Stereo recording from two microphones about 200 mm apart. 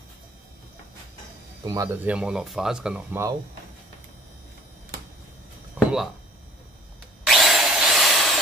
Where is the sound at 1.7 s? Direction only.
20° right (ahead or behind).